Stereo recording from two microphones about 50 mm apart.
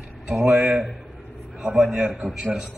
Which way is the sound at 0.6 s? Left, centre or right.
Right.